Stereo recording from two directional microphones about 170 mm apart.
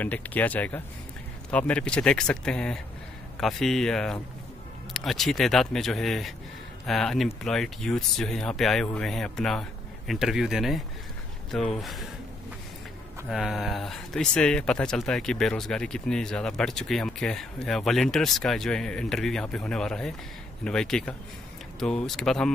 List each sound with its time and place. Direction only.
0.0 s speech: 10° left (ahead or behind)
13.3 s speech: centre (ahead or behind)